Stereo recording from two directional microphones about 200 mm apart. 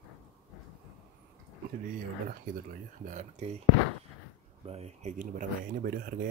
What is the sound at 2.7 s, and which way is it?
Speech, 40° right (ahead or behind).